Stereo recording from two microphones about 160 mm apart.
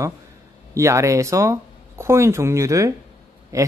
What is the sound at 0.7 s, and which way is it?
Speech, 20° right (ahead or behind).